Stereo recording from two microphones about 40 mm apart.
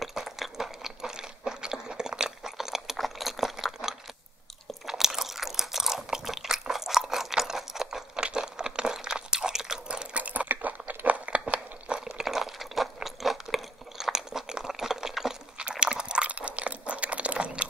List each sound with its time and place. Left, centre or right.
0.0 s a sound: centre
4.8 s crunch: centre
6.2 s chewing: centre
8.2 s crunch: centre
9.8 s chewing: right
10.2 s crunch: right
12.0 s a sound: centre
15.7 s crunch: right